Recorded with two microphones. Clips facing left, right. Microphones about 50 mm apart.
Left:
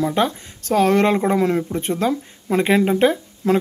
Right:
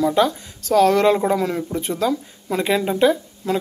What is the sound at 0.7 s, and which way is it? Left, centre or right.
Speech, left.